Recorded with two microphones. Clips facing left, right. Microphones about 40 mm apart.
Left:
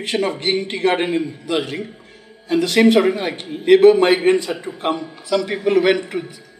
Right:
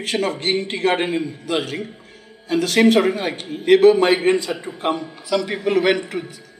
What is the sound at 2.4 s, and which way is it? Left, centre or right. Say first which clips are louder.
Speech: left 1 dB; left.